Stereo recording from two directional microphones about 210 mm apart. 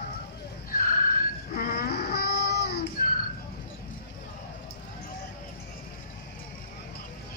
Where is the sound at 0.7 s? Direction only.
45° left (ahead or behind).